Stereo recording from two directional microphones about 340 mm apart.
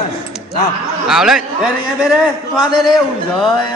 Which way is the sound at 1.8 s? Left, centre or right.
Centre.